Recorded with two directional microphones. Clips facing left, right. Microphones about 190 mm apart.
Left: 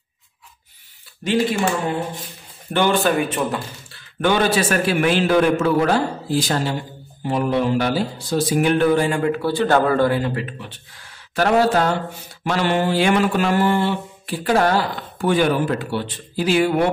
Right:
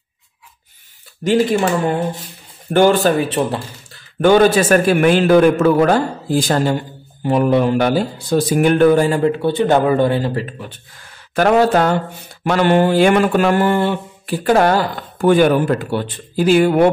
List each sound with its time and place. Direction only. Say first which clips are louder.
1.2 s mantra: right 5 dB; 45° right (ahead or behind)
2.7 s speech: right 6 dB; 40° right (ahead or behind)
4.2 s mantra: right 7 dB; 45° right (ahead or behind)
7.2 s speech: right 5 dB; 55° right (ahead or behind); by 10.7 s 40° right (ahead or behind)
11.3 s mantra: right 4 dB; 55° right (ahead or behind)